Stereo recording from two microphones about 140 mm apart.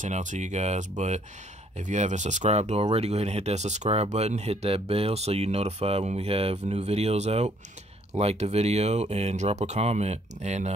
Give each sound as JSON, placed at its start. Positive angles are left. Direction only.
{"t": 0.0, "sound": "speech", "side_deg": -60}